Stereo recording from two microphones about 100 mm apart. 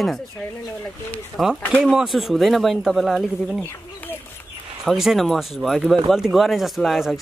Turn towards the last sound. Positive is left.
turn(degrees=0)  # may be behind; listen again after turning